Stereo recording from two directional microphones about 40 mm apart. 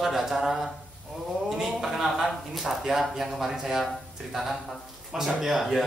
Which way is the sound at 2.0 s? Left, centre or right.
Centre.